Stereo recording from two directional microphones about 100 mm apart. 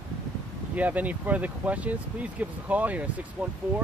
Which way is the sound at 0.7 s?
15° right (ahead or behind).